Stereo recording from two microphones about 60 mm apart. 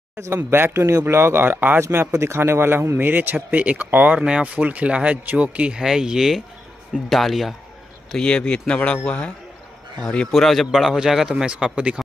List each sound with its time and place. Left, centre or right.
0.7 s speech: right
1.8 s a man's voice: right
3.0 s speech: right
5.6 s a man's voice: centre
8.1 s a man's voice: centre
9.9 s a man's voice: centre